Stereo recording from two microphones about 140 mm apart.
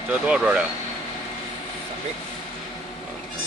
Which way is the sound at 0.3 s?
10° right (ahead or behind).